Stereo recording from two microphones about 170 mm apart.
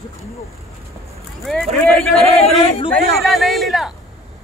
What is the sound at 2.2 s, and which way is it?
Speech, 35° left (ahead or behind).